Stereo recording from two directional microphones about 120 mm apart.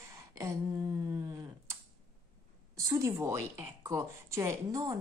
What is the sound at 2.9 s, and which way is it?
Speech, 25° right (ahead or behind).